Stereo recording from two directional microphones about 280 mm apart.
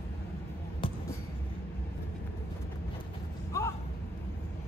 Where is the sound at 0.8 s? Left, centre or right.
Centre.